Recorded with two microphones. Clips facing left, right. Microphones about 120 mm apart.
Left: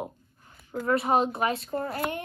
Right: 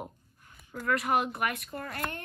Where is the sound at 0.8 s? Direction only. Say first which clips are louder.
Left 4 dB; 25° left (ahead or behind).